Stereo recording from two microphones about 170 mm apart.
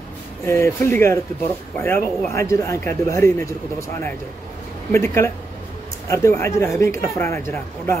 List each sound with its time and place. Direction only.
0.5 s speech: 15° left (ahead or behind)
4.9 s speech: 15° left (ahead or behind)